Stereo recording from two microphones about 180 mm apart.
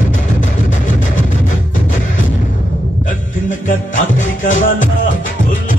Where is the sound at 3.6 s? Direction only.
45° left (ahead or behind).